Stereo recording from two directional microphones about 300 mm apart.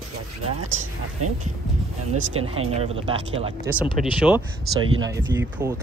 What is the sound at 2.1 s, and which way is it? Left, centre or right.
Speech, right.